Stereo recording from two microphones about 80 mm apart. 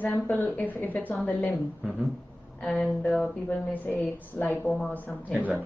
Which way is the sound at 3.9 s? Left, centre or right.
Left.